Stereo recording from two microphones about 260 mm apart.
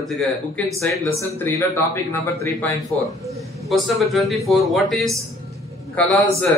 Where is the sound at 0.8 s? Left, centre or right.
Centre.